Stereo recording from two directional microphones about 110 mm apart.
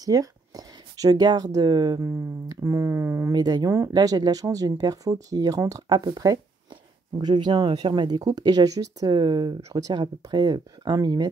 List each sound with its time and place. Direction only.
0.0 s speech: 35° right (ahead or behind)
2.0 s speech: 25° right (ahead or behind)
3.3 s speech: 35° right (ahead or behind)